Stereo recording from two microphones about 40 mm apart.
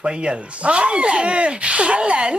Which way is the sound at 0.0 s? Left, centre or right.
Right.